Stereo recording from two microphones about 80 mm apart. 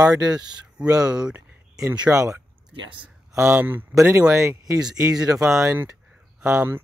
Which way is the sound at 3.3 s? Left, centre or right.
Right.